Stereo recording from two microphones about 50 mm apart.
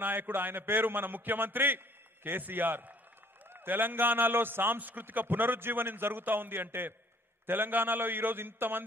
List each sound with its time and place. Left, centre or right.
0.0 s a man's voice: right